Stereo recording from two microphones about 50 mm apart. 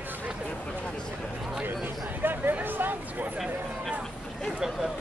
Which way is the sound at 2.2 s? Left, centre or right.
Right.